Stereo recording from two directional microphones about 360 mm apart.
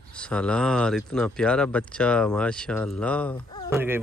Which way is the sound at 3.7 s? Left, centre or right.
Centre.